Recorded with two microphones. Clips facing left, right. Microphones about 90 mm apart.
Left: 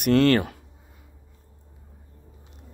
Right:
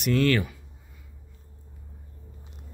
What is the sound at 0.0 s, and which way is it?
Speech, 55° left (ahead or behind).